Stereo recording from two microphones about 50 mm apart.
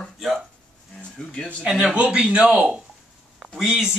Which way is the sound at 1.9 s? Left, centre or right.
Right.